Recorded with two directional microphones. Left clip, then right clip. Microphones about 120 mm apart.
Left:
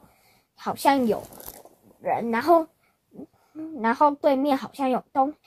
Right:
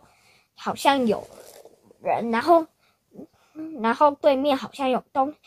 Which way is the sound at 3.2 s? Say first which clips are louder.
Even; 25° right (ahead or behind).